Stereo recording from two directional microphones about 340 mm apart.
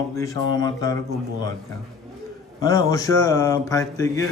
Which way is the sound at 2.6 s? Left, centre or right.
Centre.